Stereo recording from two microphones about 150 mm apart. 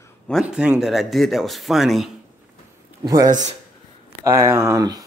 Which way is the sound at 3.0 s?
25° right (ahead or behind).